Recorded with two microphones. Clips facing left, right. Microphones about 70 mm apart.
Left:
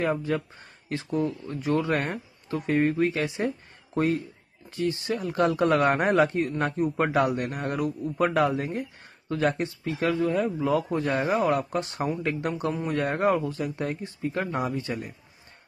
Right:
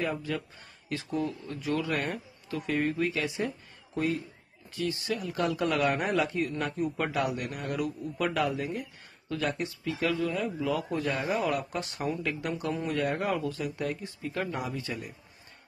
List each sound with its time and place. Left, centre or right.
0.0 s speech: left
4.6 s speech: left